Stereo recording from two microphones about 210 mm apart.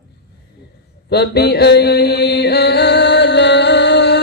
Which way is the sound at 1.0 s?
50° left (ahead or behind).